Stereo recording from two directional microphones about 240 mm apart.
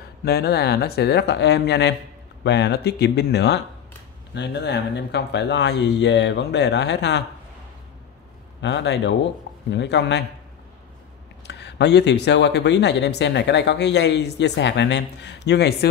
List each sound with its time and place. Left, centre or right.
0.2 s speech: left
8.5 s speech: left
11.4 s speech: left